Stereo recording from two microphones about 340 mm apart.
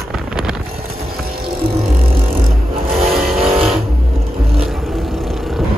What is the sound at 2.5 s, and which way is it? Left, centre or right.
Vehicle, centre.